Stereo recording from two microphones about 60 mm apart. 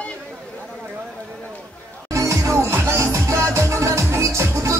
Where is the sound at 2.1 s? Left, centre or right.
Right.